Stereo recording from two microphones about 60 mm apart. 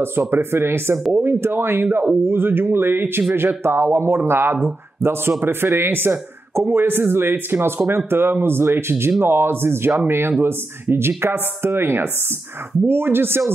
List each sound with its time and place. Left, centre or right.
0.0 s speech: right